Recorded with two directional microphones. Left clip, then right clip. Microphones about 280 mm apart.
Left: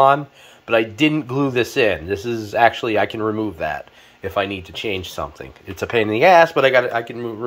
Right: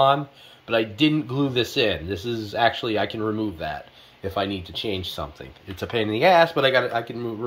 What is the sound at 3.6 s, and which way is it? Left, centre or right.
Speech, centre.